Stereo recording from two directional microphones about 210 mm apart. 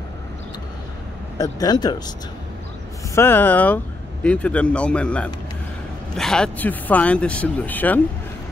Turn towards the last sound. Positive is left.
turn(degrees=10)  # may be behind; listen again after turning